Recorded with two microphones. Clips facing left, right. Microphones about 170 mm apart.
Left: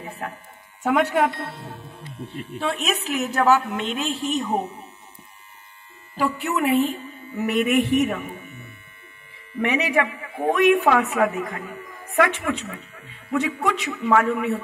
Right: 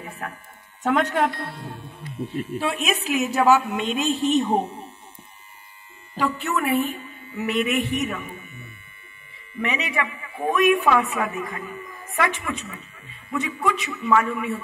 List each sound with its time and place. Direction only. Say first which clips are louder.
0.2 s a woman's voice: left 2 dB; 25° left (ahead or behind)
0.8 s a woman's voice: left 1 dB; 10° left (ahead or behind); by 4.8 s 30° right (ahead or behind)
6.1 s speech: left 1 dB; 10° left (ahead or behind)
6.6 s a woman's voice: left 4 dB; 25° left (ahead or behind)
7.3 s a man's voice: left 3 dB; 45° left (ahead or behind)
9.6 s a man's voice: left 5 dB; 60° left (ahead or behind)